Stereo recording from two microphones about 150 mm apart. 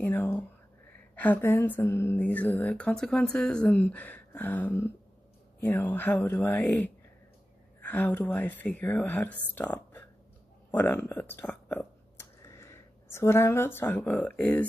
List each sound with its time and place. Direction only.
0.0 s whispering: 15° left (ahead or behind)
1.1 s speech: 10° left (ahead or behind)